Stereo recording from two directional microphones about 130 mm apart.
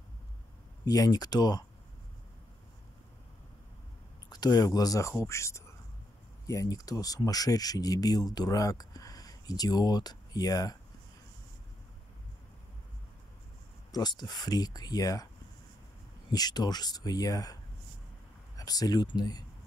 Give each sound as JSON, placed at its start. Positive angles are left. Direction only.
{"t": 0.8, "sound": "speech", "side_deg": 30}
{"t": 4.3, "sound": "speech", "side_deg": 30}
{"t": 13.9, "sound": "speech", "side_deg": 30}
{"t": 16.3, "sound": "speech", "side_deg": 30}
{"t": 18.6, "sound": "speech", "side_deg": 30}